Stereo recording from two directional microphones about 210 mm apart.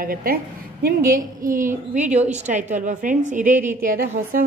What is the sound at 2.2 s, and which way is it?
A woman's voice, 35° right (ahead or behind).